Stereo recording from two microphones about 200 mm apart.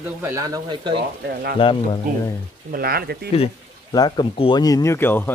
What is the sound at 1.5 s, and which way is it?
Speech, 25° left (ahead or behind).